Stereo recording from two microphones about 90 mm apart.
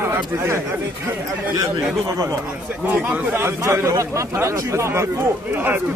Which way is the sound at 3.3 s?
30° right (ahead or behind).